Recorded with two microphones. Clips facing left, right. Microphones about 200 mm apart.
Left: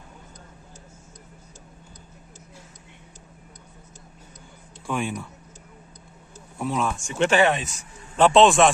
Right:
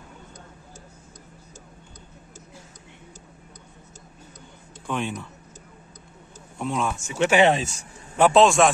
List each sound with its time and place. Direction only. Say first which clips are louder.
4.8 s speech: left 1 dB; 10° left (ahead or behind)
6.6 s speech: left 1 dB; centre (ahead or behind)
7.4 s speech: right 2 dB; 30° right (ahead or behind)
8.2 s speech: left 1 dB; centre (ahead or behind)